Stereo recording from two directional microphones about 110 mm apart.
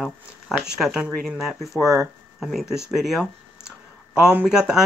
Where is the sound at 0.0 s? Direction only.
5° right (ahead or behind).